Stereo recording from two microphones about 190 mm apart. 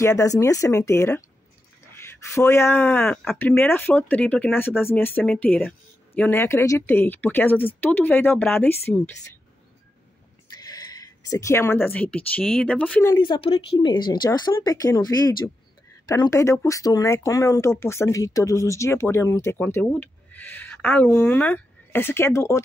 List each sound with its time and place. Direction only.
0.0 s speech: 15° left (ahead or behind)
10.6 s speech: 20° left (ahead or behind)
13.2 s speech: 25° left (ahead or behind)